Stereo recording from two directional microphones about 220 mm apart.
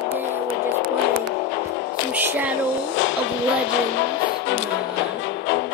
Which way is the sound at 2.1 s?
10° right (ahead or behind).